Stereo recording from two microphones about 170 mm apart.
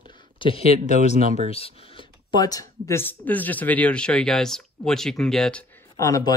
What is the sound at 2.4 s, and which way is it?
A man's voice, 20° left (ahead or behind).